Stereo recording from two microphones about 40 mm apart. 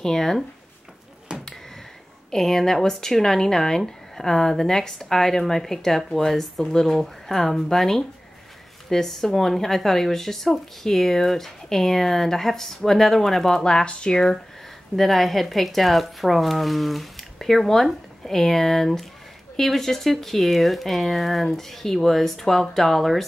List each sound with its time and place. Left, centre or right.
0.0 s speech: centre
2.3 s speech: centre
15.0 s speech: centre